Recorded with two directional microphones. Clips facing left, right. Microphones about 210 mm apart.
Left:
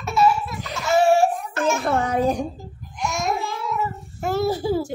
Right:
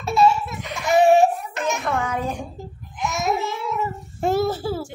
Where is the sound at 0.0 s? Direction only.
30° right (ahead or behind).